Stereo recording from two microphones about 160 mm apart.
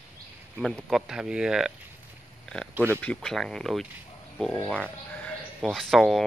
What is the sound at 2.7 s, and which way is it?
Speech, 15° right (ahead or behind).